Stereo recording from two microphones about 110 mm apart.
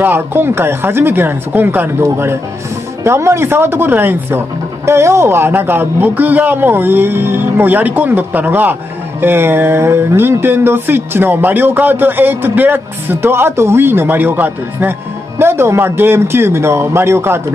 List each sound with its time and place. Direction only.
0.0 s speech: 20° right (ahead or behind)